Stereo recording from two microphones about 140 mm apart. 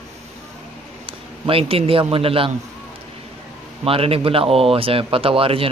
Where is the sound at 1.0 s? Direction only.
40° right (ahead or behind).